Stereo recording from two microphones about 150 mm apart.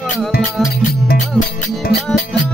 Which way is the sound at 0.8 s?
75° left (ahead or behind).